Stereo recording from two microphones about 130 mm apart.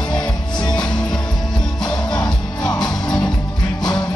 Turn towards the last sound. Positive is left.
turn(degrees=30)  # may be behind; listen again after turning